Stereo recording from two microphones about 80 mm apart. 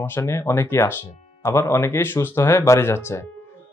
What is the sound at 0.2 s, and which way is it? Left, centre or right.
Speech, left.